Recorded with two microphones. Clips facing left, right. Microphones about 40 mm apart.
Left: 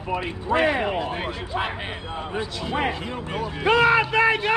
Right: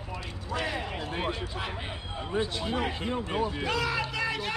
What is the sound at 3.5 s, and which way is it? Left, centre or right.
Speech, left.